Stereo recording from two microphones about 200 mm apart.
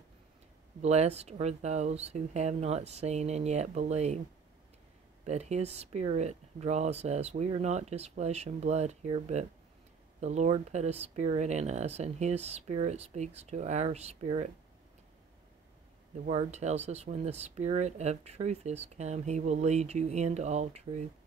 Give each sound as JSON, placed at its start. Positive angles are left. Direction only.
{"t": 0.8, "sound": "speech", "side_deg": -35}
{"t": 5.2, "sound": "speech", "side_deg": -35}
{"t": 16.3, "sound": "speech", "side_deg": -35}